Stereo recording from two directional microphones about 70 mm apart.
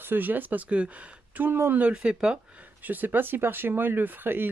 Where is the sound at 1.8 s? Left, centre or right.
Centre.